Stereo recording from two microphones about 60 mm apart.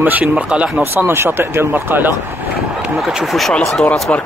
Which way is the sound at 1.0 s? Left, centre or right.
Right.